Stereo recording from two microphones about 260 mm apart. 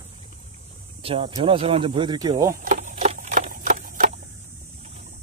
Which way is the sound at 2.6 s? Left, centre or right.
Right.